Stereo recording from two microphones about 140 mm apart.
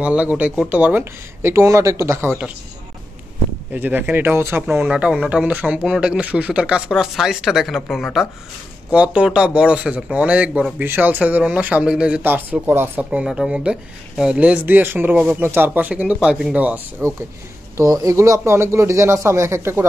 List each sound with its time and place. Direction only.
0.0 s speech: 10° right (ahead or behind)
3.7 s speech: 10° right (ahead or behind)
17.7 s speech: 25° right (ahead or behind)